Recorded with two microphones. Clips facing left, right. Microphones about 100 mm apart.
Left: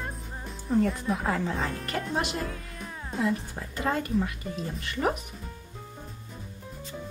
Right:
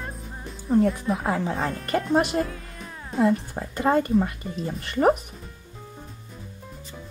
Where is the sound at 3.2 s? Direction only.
35° right (ahead or behind).